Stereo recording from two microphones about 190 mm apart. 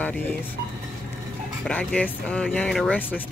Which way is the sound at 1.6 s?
5° left (ahead or behind).